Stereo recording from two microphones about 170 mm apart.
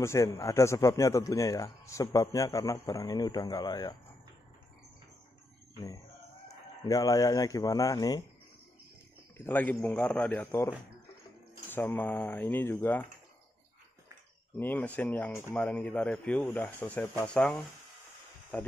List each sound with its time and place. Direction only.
0.0 s a man's voice: 15° left (ahead or behind)
6.8 s a man's voice: 20° left (ahead or behind)
9.5 s speech: 10° left (ahead or behind)
11.7 s speech: 10° left (ahead or behind)
14.6 s speech: 10° left (ahead or behind)